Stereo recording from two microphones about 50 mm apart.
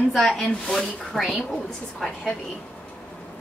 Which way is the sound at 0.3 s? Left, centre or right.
Centre.